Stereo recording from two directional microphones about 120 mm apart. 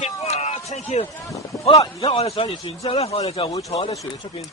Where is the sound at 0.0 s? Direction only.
65° left (ahead or behind).